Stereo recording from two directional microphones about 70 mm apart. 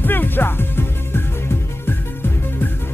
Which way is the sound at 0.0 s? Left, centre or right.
Left.